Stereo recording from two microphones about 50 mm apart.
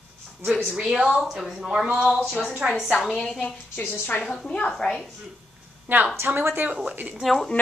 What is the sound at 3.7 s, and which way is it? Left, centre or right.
Speech, left.